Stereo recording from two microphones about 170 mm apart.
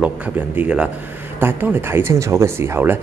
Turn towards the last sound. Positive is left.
turn(degrees=-10)  # may be behind; listen again after turning